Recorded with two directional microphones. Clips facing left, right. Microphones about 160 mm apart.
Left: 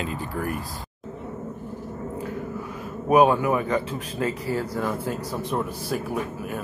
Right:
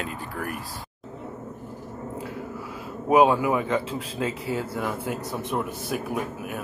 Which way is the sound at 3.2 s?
5° right (ahead or behind).